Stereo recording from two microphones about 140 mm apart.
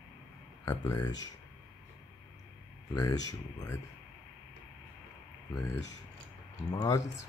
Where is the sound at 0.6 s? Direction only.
20° left (ahead or behind).